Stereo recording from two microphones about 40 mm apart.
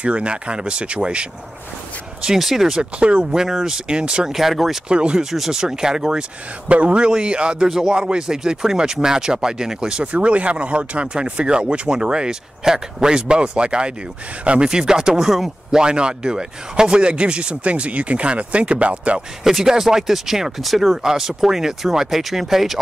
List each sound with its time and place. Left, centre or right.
0.0 s speech: right
2.2 s speech: centre
2.7 s speech: right
3.3 s speech: centre
4.3 s speech: centre
4.8 s speech: right
5.2 s speech: centre
5.5 s speech: centre
6.7 s speech: right
14.7 s speech: centre
15.7 s speech: right
19.4 s speech: centre
20.9 s speech: centre